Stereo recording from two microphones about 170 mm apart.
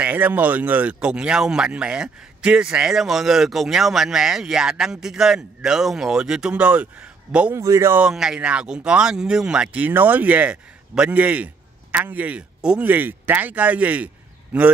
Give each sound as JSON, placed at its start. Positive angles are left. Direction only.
{"t": 0.0, "sound": "speech", "side_deg": -10}